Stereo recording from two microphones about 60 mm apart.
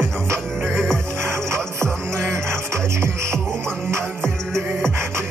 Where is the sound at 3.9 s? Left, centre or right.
Right.